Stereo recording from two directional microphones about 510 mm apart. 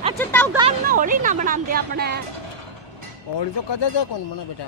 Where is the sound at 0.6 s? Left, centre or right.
Centre.